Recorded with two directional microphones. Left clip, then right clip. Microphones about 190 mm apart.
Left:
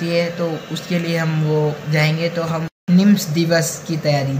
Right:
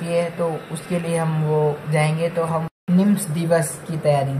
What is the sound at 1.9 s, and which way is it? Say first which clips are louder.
Speech: left 2 dB; 5° right (ahead or behind).